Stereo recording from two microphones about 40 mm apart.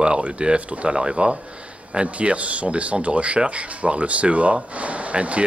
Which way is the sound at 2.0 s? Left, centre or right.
Right.